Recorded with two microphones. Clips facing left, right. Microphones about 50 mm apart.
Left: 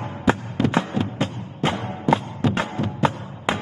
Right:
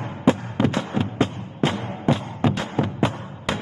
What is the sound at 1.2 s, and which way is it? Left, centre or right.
Music, left.